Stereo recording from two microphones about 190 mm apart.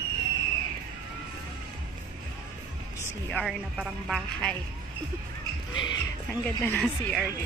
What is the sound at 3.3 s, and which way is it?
Speech, 5° left (ahead or behind).